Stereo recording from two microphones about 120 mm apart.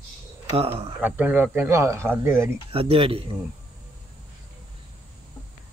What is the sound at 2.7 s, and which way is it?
Speech, 50° right (ahead or behind).